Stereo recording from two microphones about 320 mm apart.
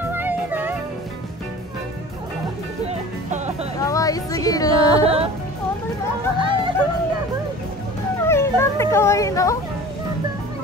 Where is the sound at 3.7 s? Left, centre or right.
Centre.